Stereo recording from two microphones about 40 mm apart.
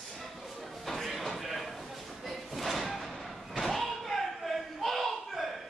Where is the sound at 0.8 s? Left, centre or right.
Centre.